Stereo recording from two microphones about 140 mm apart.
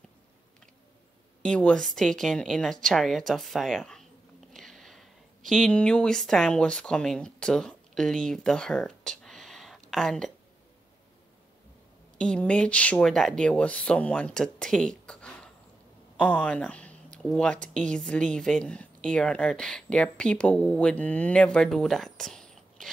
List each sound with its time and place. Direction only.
1.4 s a woman's voice: 5° left (ahead or behind)
12.2 s speech: 5° left (ahead or behind)